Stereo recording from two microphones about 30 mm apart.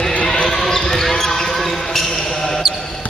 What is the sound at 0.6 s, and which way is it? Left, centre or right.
Basketball bounce, centre.